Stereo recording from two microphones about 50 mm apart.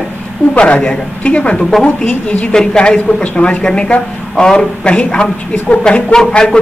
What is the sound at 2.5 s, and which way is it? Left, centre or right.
A woman's voice, centre.